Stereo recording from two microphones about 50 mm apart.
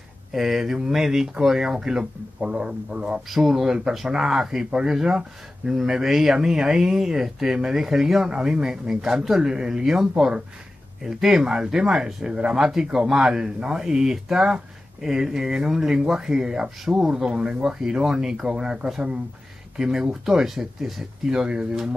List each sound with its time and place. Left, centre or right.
0.3 s speech: centre
3.3 s speech: centre
21.4 s speech: centre